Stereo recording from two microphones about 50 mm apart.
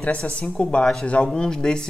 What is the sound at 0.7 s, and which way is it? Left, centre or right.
Speech, centre.